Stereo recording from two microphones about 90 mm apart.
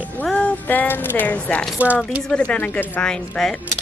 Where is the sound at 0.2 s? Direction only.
15° left (ahead or behind).